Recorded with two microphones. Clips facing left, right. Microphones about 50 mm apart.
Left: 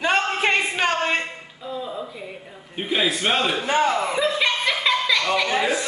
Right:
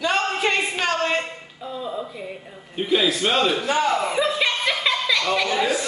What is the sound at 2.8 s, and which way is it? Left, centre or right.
Speech, centre.